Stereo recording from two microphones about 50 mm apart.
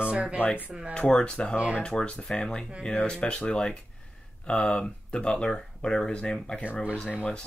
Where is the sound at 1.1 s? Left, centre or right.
Centre.